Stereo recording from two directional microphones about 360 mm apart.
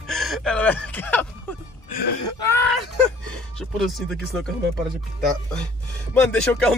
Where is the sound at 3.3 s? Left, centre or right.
Centre.